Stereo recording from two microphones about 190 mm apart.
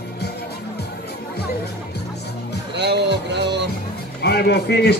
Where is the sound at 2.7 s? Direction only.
65° right (ahead or behind).